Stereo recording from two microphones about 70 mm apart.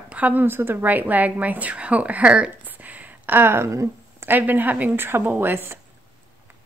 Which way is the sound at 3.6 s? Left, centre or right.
Right.